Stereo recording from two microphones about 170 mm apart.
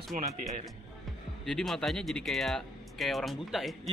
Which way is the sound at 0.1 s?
50° right (ahead or behind).